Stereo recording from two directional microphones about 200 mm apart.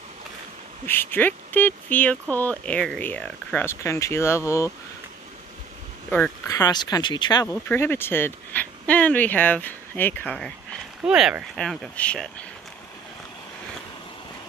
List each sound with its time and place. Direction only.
0.8 s speech: 10° left (ahead or behind)
6.0 s a sound: 10° left (ahead or behind)
6.5 s speech: 20° left (ahead or behind)